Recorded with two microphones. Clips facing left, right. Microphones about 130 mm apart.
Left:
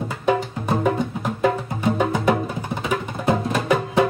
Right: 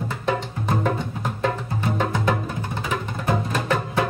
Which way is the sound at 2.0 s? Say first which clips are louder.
Left 3 dB; 10° left (ahead or behind).